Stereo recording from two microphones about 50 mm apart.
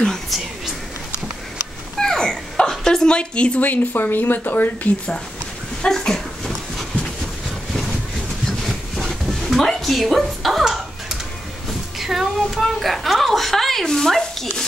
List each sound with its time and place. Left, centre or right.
2.0 s a sound: centre
3.6 s speech: left
4.9 s speech: left
5.9 s dog: centre
8.9 s a sound: centre
12.0 s speech: centre